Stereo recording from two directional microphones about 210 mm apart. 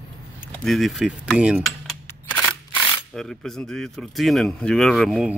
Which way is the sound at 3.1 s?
Centre (ahead or behind).